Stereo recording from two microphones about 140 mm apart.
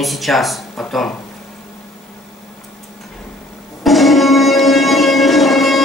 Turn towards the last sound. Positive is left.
turn(degrees=0)  # may be behind; listen again after turning